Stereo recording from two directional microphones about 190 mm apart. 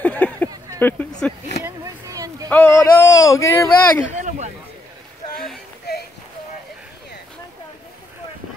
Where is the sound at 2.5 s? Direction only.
10° left (ahead or behind).